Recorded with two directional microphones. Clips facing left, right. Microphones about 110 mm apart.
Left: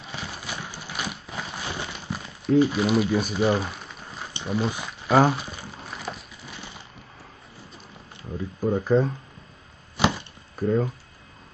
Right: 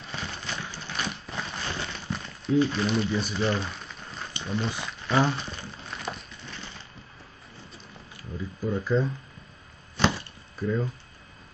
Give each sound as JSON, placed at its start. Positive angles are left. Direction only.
{"t": 0.0, "sound": "a sound", "side_deg": 10}
{"t": 2.6, "sound": "speech", "side_deg": 10}
{"t": 3.1, "sound": "speech", "side_deg": 50}
{"t": 3.3, "sound": "speech", "side_deg": 10}
{"t": 5.3, "sound": "crumpling", "side_deg": 10}
{"t": 8.4, "sound": "speech", "side_deg": 55}
{"t": 9.9, "sound": "wood", "side_deg": 10}
{"t": 10.5, "sound": "speech", "side_deg": 50}